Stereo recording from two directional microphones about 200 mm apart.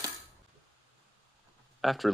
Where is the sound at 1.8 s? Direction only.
Centre (ahead or behind).